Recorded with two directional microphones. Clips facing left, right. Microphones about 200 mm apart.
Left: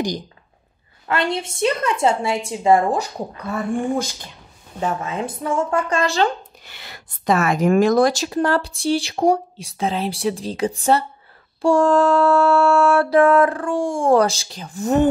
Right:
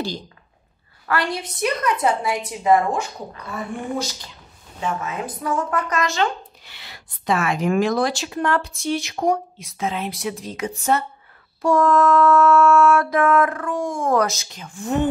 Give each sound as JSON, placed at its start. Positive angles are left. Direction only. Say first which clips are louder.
{"t": 1.0, "sound": "a woman's voice", "louder": "left 2 dB", "side_deg": 25}
{"t": 4.7, "sound": "a woman's voice", "louder": "left 3 dB", "side_deg": 35}
{"t": 6.6, "sound": "a woman's voice", "louder": "left 3 dB", "side_deg": 50}